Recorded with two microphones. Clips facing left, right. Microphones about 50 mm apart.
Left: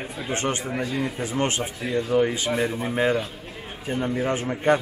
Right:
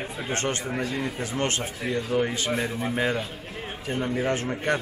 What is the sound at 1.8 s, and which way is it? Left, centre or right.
A man's voice, centre.